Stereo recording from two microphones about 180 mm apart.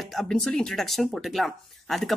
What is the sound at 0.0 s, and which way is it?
Speech, centre (ahead or behind).